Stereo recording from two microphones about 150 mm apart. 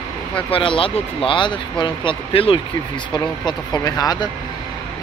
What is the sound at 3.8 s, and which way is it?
Speech, 25° left (ahead or behind).